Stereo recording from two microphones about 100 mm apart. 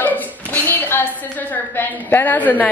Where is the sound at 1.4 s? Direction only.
20° left (ahead or behind).